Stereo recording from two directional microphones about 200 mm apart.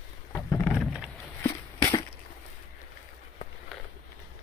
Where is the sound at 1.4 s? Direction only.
15° left (ahead or behind).